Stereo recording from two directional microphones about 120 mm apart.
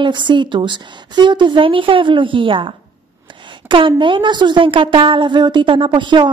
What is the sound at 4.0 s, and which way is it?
A woman's voice, 45° right (ahead or behind).